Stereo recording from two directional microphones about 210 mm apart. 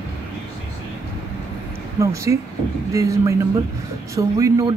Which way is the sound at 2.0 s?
15° right (ahead or behind).